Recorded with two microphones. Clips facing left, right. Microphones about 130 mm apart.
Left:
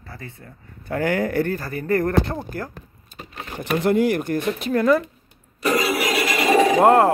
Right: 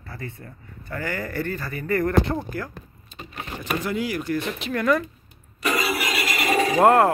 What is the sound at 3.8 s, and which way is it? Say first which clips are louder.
Speech: left 11 dB; 55° left (ahead or behind).